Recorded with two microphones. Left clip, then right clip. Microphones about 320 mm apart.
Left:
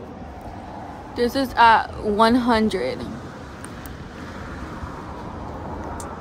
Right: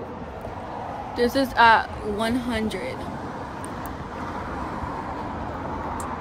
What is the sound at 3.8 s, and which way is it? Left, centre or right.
Vehicle, centre.